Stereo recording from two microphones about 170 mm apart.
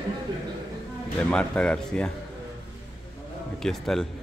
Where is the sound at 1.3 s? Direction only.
5° left (ahead or behind).